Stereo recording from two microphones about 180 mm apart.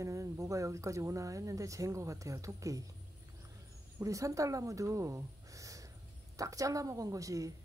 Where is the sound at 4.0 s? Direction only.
20° right (ahead or behind).